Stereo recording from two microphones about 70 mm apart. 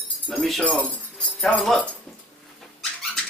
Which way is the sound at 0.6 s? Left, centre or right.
Left.